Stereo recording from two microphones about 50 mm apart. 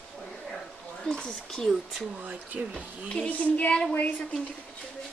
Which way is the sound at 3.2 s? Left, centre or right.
Left.